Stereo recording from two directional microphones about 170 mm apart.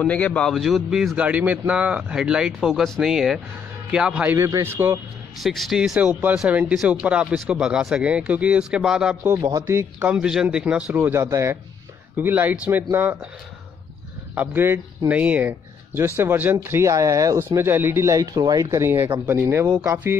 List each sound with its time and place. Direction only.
0.0 s speech: 10° left (ahead or behind)
4.4 s speech: 20° right (ahead or behind)
5.4 s speech: centre (ahead or behind)
9.2 s speech: 15° right (ahead or behind)
14.3 s speech: 10° right (ahead or behind)